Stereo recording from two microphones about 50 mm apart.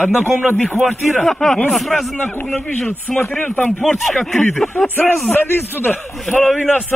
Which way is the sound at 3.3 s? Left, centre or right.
Left.